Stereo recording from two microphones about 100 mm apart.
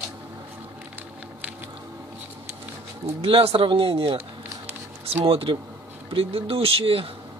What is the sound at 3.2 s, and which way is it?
Speech, 70° right (ahead or behind).